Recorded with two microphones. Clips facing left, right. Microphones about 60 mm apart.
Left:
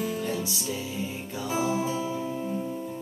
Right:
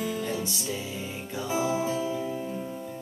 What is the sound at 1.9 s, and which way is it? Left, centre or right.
Music, centre.